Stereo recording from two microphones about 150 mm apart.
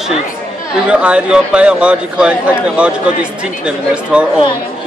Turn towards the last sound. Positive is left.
turn(degrees=-5)  # may be behind; listen again after turning